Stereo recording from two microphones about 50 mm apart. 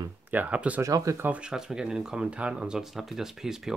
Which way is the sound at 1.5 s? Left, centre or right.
Centre.